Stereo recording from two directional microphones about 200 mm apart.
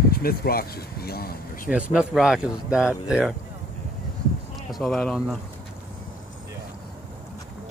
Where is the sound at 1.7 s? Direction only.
5° right (ahead or behind).